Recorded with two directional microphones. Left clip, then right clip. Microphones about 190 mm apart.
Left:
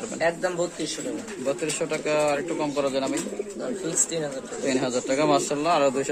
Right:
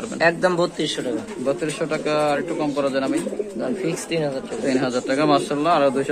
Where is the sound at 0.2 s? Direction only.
55° right (ahead or behind).